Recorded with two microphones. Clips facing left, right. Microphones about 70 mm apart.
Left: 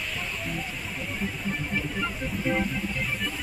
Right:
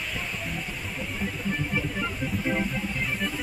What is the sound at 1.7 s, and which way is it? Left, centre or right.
Music, centre.